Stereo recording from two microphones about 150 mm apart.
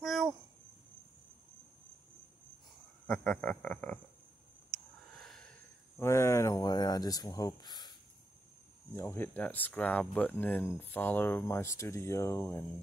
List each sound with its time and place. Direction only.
0.0 s cricket: centre (ahead or behind)
3.1 s speech: 10° left (ahead or behind)
4.7 s a sound: 45° right (ahead or behind)
5.9 s speech: 20° left (ahead or behind)
8.9 s speech: 15° left (ahead or behind)